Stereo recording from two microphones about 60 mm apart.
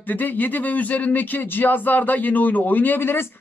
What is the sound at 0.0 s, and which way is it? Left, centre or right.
Speech, left.